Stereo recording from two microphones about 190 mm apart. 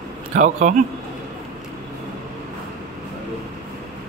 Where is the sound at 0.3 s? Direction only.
40° right (ahead or behind).